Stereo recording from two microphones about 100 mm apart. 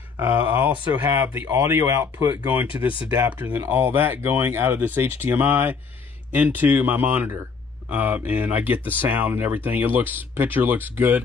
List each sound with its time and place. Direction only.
0.2 s speech: 20° right (ahead or behind)